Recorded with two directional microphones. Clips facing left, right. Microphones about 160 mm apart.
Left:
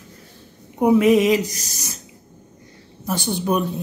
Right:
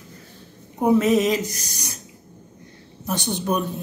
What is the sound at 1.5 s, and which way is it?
Speech, 55° right (ahead or behind).